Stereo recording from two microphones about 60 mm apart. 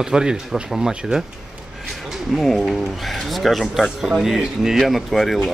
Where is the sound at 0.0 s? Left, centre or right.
Centre.